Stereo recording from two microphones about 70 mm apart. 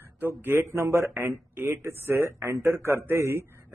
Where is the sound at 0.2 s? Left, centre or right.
Right.